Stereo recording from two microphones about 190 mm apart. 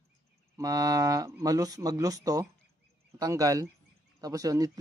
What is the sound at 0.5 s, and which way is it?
Speech, 20° right (ahead or behind).